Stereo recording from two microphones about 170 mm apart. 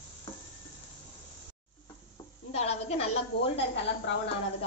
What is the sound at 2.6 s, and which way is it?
A woman's voice, 40° left (ahead or behind).